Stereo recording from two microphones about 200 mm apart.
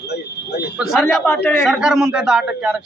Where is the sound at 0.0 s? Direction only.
55° left (ahead or behind).